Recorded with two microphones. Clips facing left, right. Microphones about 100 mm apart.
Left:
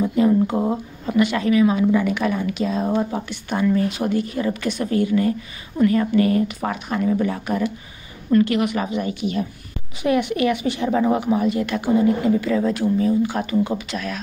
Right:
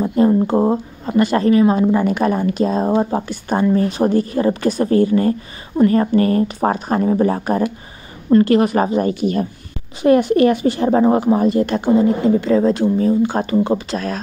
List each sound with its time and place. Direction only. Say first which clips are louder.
0.0 s speech: right 3 dB; 35° right (ahead or behind)